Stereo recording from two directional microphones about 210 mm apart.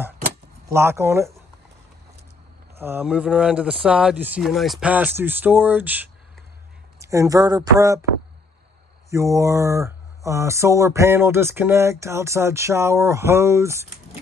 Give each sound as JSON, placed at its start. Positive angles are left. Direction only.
{"t": 0.7, "sound": "speech", "side_deg": -15}
{"t": 2.8, "sound": "speech", "side_deg": -10}
{"t": 9.1, "sound": "speech", "side_deg": -15}